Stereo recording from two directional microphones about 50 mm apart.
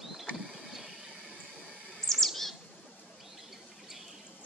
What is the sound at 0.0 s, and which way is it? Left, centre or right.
Vehicle, centre.